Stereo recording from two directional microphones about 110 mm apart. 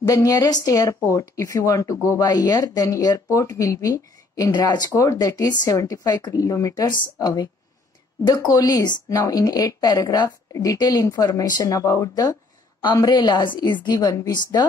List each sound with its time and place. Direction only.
0.0 s speech: 30° left (ahead or behind)